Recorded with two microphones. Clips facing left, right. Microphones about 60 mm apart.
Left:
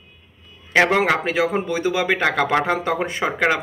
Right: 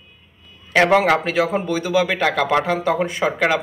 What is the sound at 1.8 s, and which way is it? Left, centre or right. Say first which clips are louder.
Speech: right 1 dB; left.